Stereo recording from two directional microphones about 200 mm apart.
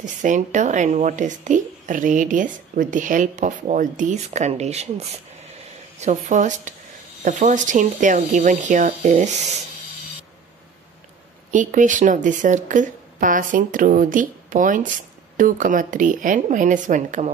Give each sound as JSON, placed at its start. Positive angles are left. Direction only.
{"t": 0.0, "sound": "speech", "side_deg": -40}
{"t": 11.5, "sound": "speech", "side_deg": -40}